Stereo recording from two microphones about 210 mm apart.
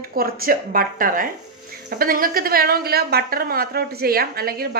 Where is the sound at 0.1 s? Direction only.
45° right (ahead or behind).